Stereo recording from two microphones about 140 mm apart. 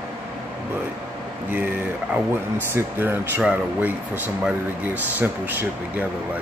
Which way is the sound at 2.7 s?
15° right (ahead or behind).